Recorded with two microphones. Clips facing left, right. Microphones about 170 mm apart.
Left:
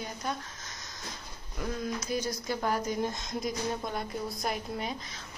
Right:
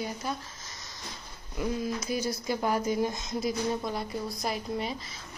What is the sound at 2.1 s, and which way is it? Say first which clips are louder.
A woman's voice: right 1 dB; 10° right (ahead or behind).